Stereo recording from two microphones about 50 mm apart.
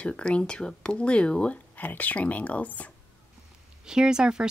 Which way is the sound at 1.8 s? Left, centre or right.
Left.